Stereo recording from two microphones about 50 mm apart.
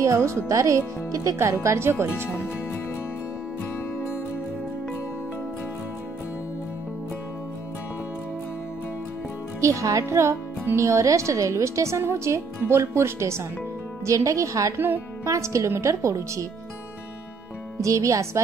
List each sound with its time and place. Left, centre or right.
0.0 s speech: right
9.6 s a woman's voice: right
10.8 s a woman's voice: right
12.0 s a woman's voice: right
14.0 s a woman's voice: right
17.7 s a woman's voice: right